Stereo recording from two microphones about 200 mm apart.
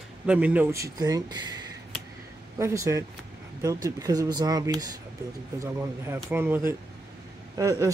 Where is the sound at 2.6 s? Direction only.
15° right (ahead or behind).